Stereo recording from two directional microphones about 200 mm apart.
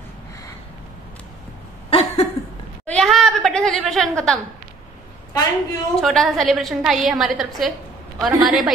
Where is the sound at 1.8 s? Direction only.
30° left (ahead or behind).